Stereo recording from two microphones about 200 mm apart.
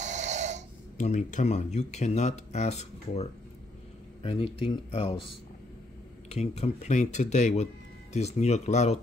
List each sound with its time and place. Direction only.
0.0 s snoring: 35° right (ahead or behind)
0.9 s speech: 35° left (ahead or behind)
6.2 s speech: 35° left (ahead or behind)